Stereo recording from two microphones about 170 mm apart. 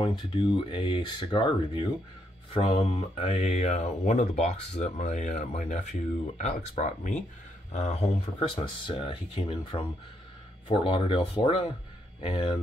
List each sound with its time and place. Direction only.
0.0 s speech: 30° left (ahead or behind)